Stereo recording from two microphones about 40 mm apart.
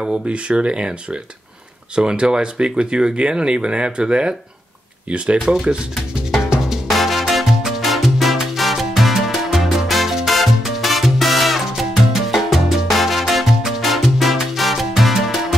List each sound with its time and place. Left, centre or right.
0.3 s speech: right
5.1 s speech: right
5.5 s speech: centre
6.4 s music: centre
6.9 s music: centre